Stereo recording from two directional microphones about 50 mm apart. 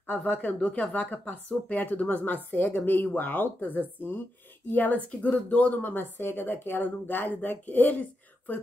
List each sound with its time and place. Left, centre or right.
0.6 s speech: left
5.8 s speech: left